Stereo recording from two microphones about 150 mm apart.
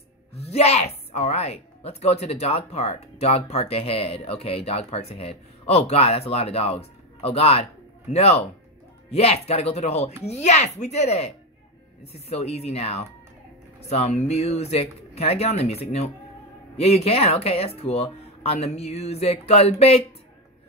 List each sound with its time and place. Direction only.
0.3 s speech: 45° left (ahead or behind)